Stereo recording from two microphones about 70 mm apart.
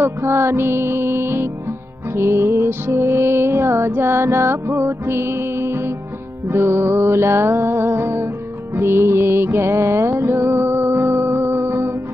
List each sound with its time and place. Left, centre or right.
0.0 s music: right